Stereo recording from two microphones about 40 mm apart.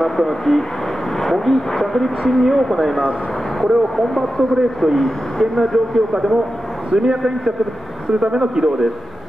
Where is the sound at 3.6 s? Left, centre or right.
Centre.